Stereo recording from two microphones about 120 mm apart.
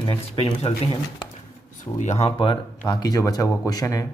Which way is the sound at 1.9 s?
65° left (ahead or behind).